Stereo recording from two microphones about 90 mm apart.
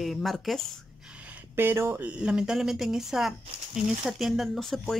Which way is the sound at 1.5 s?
25° right (ahead or behind).